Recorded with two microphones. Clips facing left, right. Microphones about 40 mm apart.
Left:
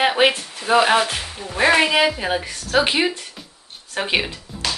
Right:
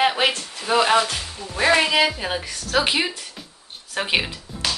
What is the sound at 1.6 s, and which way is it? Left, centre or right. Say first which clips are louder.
A woman's voice: left 2 dB; centre.